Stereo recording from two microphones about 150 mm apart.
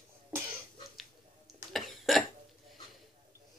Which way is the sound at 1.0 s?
Centre (ahead or behind).